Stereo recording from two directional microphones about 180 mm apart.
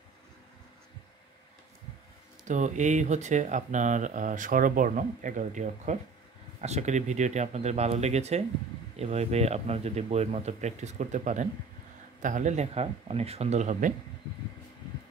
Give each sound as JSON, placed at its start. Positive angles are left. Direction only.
{"t": 2.4, "sound": "speech", "side_deg": -45}